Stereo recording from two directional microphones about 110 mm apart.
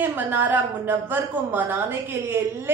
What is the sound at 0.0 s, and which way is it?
A woman's voice, 15° right (ahead or behind).